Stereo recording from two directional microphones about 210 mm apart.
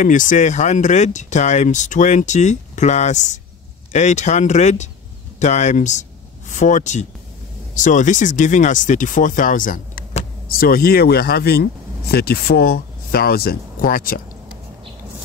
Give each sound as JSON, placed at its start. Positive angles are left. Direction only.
{"t": 0.0, "sound": "speech", "side_deg": 40}